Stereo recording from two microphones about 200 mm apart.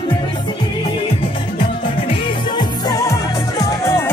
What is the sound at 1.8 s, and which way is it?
Music, 25° left (ahead or behind).